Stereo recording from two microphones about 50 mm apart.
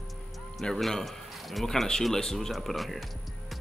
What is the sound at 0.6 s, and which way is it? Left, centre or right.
Speech, centre.